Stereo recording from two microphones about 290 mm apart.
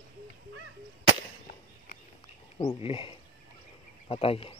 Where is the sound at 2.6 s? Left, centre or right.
Centre.